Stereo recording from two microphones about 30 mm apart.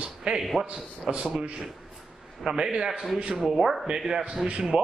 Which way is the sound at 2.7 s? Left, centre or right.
Right.